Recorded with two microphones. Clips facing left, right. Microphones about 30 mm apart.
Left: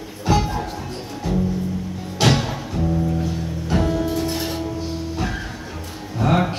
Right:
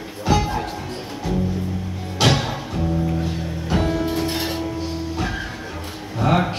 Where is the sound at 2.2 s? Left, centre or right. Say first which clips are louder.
Even; centre.